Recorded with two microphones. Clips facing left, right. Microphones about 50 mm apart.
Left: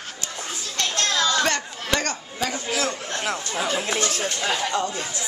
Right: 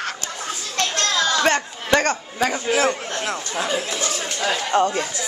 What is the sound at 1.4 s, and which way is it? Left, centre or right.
Speech, right.